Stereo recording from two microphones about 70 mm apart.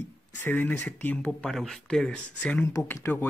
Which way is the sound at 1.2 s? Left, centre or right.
Centre.